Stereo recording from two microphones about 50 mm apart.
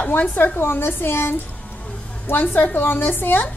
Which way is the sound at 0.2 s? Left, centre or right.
Left.